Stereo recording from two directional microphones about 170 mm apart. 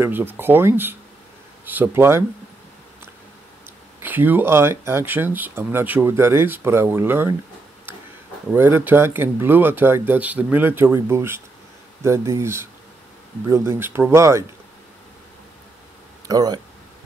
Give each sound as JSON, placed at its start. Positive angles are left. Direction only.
{"t": 0.0, "sound": "speech", "side_deg": -15}
{"t": 4.0, "sound": "speech", "side_deg": -10}
{"t": 8.5, "sound": "speech", "side_deg": -15}
{"t": 16.3, "sound": "speech", "side_deg": -20}